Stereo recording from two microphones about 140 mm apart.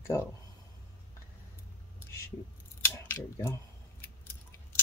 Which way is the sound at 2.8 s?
15° left (ahead or behind).